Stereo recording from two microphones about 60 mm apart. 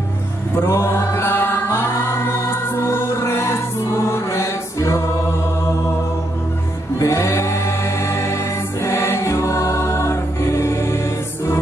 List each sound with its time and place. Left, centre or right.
0.6 s chant: left
7.0 s music: left